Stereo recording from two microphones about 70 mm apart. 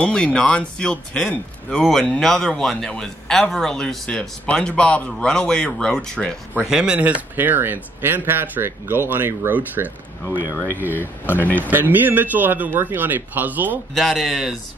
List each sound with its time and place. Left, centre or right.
0.0 s a man's voice: centre
6.6 s speech: centre
7.3 s speech: right
10.9 s speech: left
11.6 s speech: right
13.9 s speech: centre